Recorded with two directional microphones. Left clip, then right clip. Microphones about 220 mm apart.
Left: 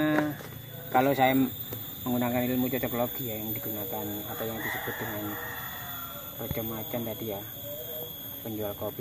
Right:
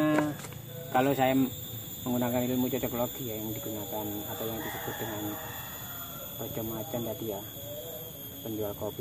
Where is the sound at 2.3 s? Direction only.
30° left (ahead or behind).